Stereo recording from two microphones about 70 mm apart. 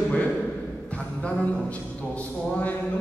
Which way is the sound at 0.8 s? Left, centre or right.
Centre.